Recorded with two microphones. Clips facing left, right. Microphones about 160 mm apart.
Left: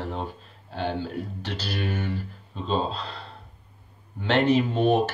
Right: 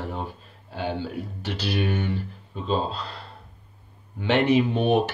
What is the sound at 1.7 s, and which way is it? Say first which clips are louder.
Speech: right 4 dB; 20° right (ahead or behind).